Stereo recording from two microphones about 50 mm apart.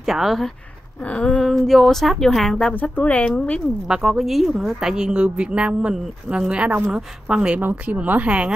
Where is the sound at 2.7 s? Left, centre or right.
Left.